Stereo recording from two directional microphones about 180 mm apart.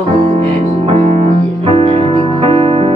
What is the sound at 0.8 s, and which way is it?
Music, 40° right (ahead or behind).